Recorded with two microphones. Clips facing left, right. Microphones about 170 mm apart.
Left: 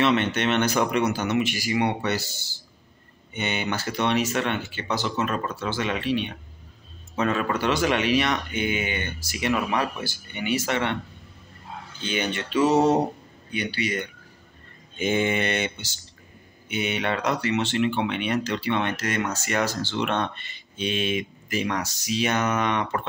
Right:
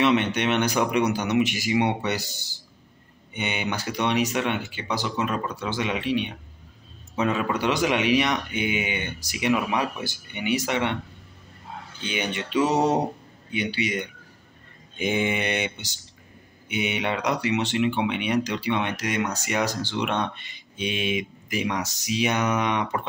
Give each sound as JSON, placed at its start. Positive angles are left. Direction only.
{"t": 0.0, "sound": "speech", "side_deg": -15}
{"t": 12.0, "sound": "speech", "side_deg": -15}